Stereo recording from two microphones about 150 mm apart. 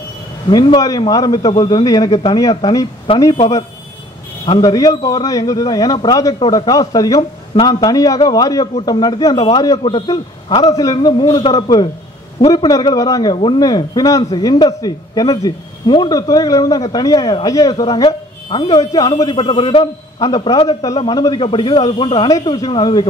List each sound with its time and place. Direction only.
0.5 s a man's voice: 25° left (ahead or behind)
4.6 s a man's voice: 25° left (ahead or behind)